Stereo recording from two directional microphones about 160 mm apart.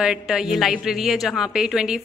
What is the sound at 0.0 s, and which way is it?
A woman's voice, 5° right (ahead or behind).